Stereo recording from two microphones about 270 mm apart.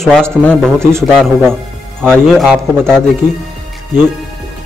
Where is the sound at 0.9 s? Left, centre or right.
Centre.